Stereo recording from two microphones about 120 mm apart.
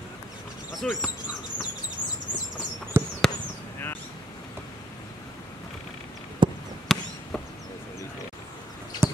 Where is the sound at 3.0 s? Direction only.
20° right (ahead or behind).